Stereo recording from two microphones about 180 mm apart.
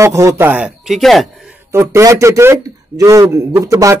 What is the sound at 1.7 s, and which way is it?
A man's voice, 15° right (ahead or behind).